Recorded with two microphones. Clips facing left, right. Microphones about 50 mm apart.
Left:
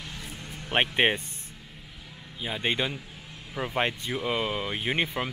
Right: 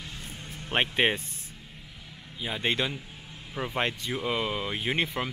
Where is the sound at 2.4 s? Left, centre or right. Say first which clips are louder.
Even; centre.